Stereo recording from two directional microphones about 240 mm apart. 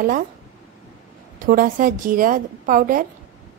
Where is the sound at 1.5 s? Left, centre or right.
Right.